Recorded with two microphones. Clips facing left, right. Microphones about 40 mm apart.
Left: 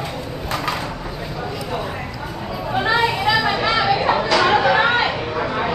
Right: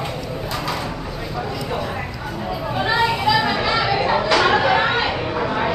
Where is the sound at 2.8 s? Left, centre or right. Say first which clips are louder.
Even; centre.